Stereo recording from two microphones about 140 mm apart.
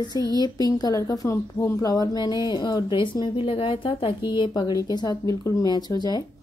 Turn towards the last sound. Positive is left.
turn(degrees=30)  # may be behind; listen again after turning